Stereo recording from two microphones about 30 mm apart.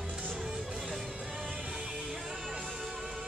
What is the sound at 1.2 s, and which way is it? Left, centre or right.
Music, right.